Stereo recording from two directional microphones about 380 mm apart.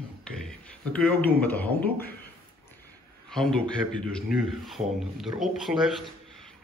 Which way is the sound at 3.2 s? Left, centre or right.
Centre.